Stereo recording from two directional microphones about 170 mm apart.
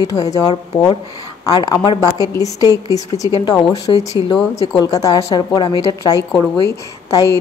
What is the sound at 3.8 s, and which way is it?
Speech, 35° left (ahead or behind).